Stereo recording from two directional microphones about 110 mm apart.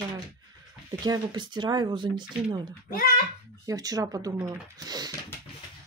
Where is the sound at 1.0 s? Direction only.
40° right (ahead or behind).